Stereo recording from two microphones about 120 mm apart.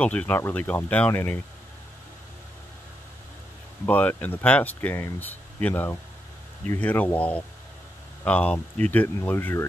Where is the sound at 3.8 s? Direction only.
15° left (ahead or behind).